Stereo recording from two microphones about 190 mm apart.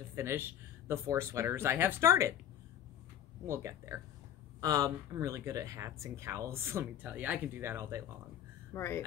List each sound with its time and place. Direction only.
0.1 s speech: 15° right (ahead or behind)
3.4 s speech: 15° right (ahead or behind)
8.7 s speech: 15° left (ahead or behind)